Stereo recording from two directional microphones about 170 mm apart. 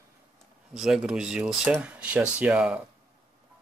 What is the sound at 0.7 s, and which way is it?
Speech, 5° right (ahead or behind).